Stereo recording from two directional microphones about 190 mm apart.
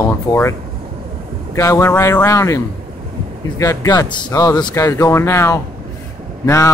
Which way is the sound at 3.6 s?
20° left (ahead or behind).